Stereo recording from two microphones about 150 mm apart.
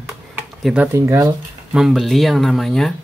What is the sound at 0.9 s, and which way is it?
Speech, 20° right (ahead or behind).